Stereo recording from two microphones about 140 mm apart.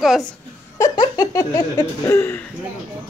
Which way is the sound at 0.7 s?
25° left (ahead or behind).